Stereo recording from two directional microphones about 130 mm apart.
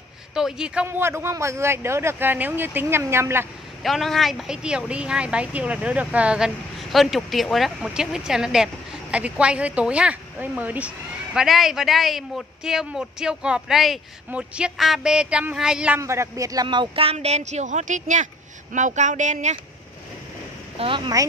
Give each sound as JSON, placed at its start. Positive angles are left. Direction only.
{"t": 0.3, "sound": "speech", "side_deg": -5}
{"t": 0.8, "sound": "speech", "side_deg": -20}
{"t": 3.8, "sound": "speech", "side_deg": 0}
{"t": 11.3, "sound": "speech", "side_deg": 0}
{"t": 16.0, "sound": "speech", "side_deg": -20}
{"t": 16.6, "sound": "speech", "side_deg": -40}
{"t": 20.7, "sound": "a woman's voice", "side_deg": -40}